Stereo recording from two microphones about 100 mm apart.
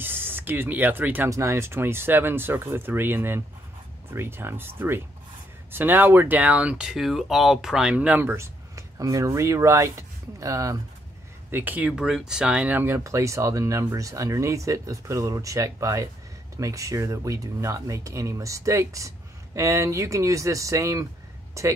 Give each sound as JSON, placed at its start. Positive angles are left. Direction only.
{"t": 0.0, "sound": "speech", "side_deg": -20}
{"t": 11.5, "sound": "speech", "side_deg": -20}